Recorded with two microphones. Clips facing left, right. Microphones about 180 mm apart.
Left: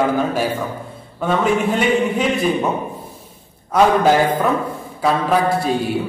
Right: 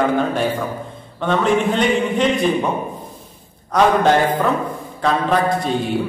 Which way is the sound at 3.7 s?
5° left (ahead or behind).